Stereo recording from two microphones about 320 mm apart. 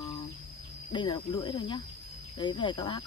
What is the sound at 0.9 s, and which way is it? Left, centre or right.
Speech, centre.